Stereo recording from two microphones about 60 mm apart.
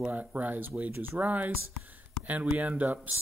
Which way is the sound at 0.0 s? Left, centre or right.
Right.